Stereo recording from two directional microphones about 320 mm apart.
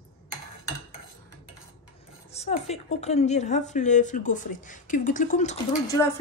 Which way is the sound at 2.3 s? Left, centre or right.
Centre.